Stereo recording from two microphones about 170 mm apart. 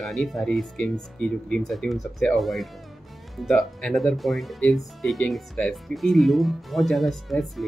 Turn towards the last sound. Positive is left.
turn(degrees=0)  # may be behind; listen again after turning